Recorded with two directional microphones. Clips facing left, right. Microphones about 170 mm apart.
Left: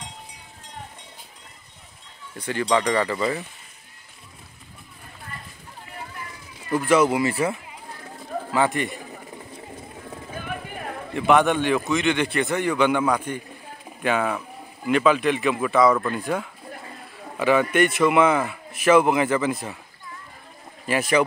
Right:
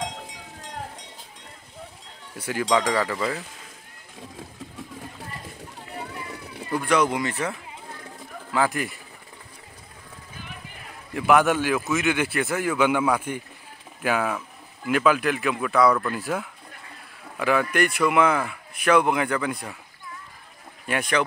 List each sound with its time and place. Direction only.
0.0 s cowbell: 90° right
2.3 s speech: 10° right (ahead or behind)
6.7 s speech: 5° left (ahead or behind)
8.5 s speech: centre (ahead or behind)
10.3 s a sound: 55° left (ahead or behind)
11.1 s speech: 5° right (ahead or behind)
20.8 s speech: centre (ahead or behind)